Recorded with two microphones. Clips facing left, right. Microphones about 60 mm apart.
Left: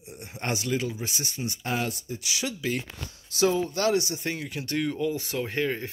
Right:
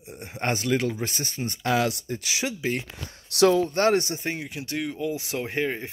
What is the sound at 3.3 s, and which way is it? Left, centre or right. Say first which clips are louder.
Speech: right 5 dB; right.